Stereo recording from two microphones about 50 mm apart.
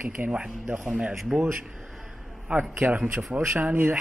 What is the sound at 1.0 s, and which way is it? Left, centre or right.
Speech, right.